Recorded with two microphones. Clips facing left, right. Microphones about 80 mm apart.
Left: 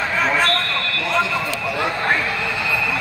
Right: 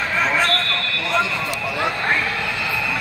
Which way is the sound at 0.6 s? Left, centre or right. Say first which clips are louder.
Left 1 dB; left.